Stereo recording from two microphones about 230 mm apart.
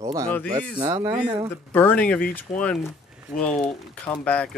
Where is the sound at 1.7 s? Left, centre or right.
Centre.